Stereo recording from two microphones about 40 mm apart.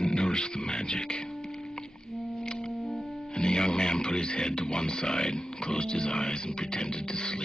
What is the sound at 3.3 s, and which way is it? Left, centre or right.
Speech, left.